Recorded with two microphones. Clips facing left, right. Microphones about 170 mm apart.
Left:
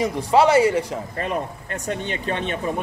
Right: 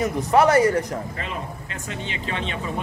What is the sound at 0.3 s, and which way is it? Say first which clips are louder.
Speech: left 1 dB; 20° left (ahead or behind).